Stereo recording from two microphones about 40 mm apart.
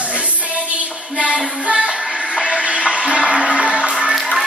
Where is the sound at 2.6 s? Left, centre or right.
Right.